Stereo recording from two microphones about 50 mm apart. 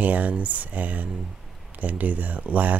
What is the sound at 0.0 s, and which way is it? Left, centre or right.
Speech, right.